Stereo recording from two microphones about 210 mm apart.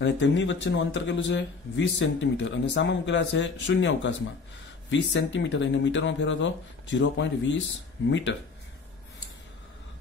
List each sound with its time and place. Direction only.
0.0 s speech: 60° left (ahead or behind)